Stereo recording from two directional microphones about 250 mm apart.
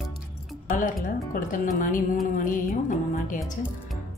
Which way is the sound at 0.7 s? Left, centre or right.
Left.